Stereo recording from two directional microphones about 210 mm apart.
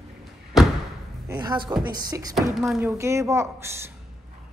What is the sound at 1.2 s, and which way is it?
Speech, 20° right (ahead or behind).